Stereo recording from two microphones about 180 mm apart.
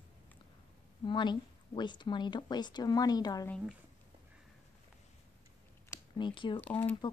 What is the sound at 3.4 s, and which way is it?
Speech, 5° left (ahead or behind).